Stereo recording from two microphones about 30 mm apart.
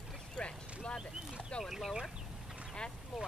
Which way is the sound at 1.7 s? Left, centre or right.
Centre.